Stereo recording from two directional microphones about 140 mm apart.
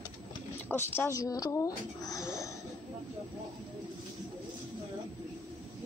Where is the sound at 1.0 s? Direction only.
25° left (ahead or behind).